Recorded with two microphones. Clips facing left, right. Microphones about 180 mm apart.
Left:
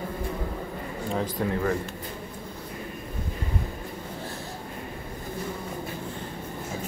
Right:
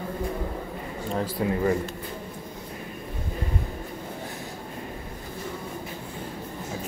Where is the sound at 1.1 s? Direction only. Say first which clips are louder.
Right 2 dB; 10° right (ahead or behind).